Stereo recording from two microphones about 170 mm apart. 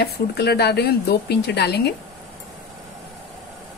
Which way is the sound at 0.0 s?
70° left (ahead or behind).